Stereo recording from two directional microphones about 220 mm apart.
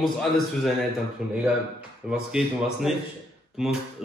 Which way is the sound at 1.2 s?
5° right (ahead or behind).